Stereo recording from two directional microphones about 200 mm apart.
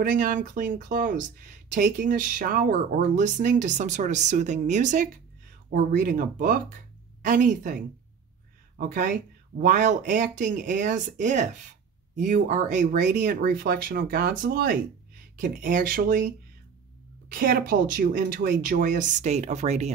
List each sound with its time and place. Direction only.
0.0 s a woman's voice: 40° right (ahead or behind)
8.7 s speech: 40° right (ahead or behind)
17.3 s speech: 45° right (ahead or behind)